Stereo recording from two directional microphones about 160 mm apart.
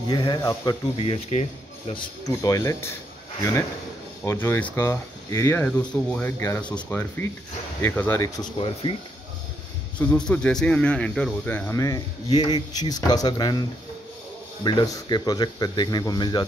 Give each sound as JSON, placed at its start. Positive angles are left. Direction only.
{"t": 0.1, "sound": "speech", "side_deg": 25}
{"t": 0.9, "sound": "speech", "side_deg": 40}
{"t": 2.2, "sound": "speech", "side_deg": 20}
{"t": 4.2, "sound": "speech", "side_deg": 15}
{"t": 8.2, "sound": "speech", "side_deg": 30}
{"t": 9.9, "sound": "speech", "side_deg": 5}